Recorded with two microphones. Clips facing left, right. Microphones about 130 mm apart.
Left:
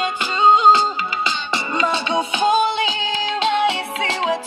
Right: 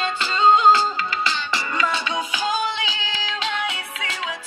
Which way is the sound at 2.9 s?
55° left (ahead or behind).